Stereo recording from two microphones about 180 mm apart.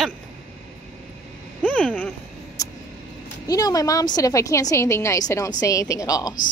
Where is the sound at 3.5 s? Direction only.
20° left (ahead or behind).